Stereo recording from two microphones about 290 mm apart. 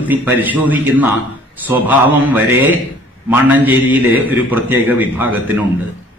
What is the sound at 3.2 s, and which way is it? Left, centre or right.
A man's voice, centre.